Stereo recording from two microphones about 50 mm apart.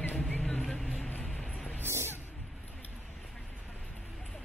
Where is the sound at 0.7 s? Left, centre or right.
Left.